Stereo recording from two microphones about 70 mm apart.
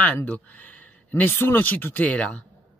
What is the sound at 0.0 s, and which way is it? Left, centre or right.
Speech, left.